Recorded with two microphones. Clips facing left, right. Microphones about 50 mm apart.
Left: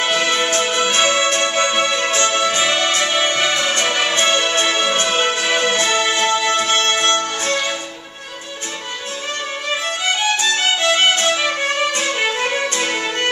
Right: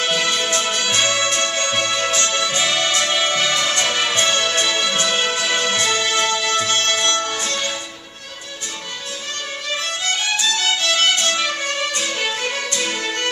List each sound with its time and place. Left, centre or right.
0.0 s music: left
10.3 s music: left